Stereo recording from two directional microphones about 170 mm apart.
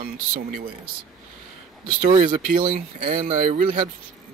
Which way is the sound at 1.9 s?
45° right (ahead or behind).